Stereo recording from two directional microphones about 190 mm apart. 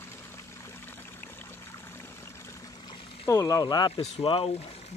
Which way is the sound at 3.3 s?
15° left (ahead or behind).